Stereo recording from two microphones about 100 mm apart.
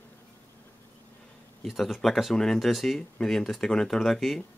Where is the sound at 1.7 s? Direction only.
Centre (ahead or behind).